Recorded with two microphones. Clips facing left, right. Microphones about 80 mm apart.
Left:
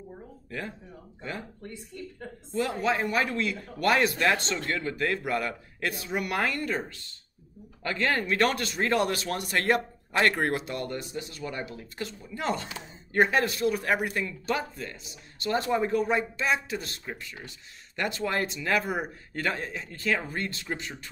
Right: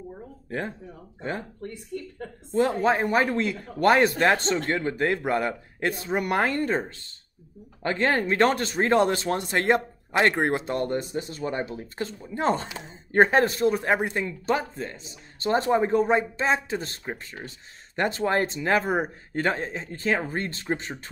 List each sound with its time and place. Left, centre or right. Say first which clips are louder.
0.5 s a man's voice: right 6 dB; right
1.9 s a woman's voice: right 7 dB; right
2.5 s a man's voice: right 5 dB; right